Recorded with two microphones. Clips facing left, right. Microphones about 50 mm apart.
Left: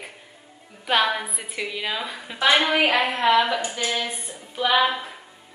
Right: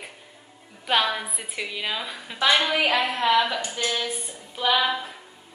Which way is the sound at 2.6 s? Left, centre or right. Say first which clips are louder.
Left 2 dB; centre.